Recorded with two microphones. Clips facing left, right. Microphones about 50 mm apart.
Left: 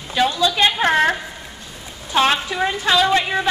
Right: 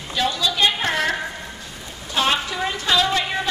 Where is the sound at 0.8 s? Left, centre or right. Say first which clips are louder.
Left 6 dB; left.